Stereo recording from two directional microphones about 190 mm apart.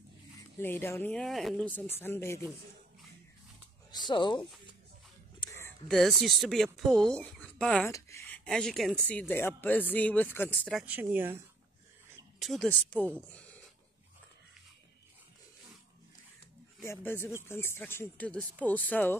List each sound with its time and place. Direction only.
0.6 s a woman's voice: 10° left (ahead or behind)
4.1 s speech: 25° left (ahead or behind)
5.9 s speech: centre (ahead or behind)
7.9 s a sound: 15° left (ahead or behind)
8.5 s a woman's voice: 5° left (ahead or behind)
12.4 s a woman's voice: centre (ahead or behind)
16.8 s a woman's voice: 15° left (ahead or behind)